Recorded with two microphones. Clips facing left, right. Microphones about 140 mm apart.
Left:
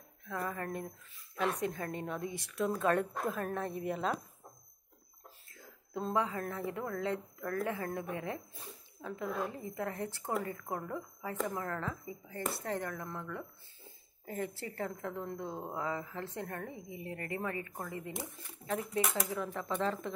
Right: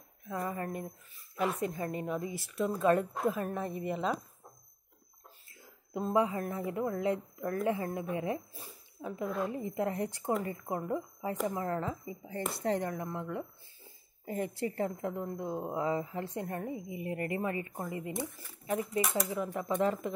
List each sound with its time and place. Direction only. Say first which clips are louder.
0.4 s a woman's voice: right 2 dB; 10° right (ahead or behind)
5.6 s a woman's voice: right 2 dB; 15° right (ahead or behind)
18.7 s a woman's voice: right 2 dB; centre (ahead or behind)
19.5 s speech: right 6 dB; 15° right (ahead or behind)